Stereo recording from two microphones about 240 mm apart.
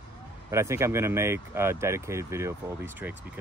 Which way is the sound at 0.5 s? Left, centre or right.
Centre.